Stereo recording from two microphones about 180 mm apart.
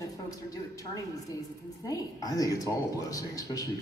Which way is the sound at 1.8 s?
20° left (ahead or behind).